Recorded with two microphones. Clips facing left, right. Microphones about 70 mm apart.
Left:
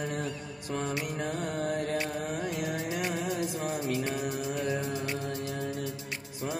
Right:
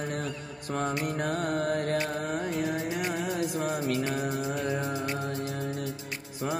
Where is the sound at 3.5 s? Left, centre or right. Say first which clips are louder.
Right 3 dB; right.